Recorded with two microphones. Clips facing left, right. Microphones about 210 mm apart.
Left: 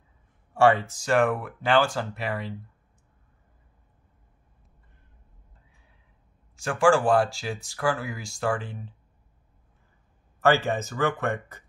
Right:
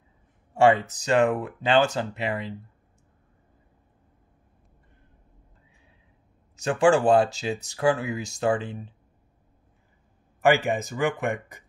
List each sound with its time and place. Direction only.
0.6 s speech: 20° right (ahead or behind)
6.5 s speech: 20° right (ahead or behind)
10.4 s speech: 15° right (ahead or behind)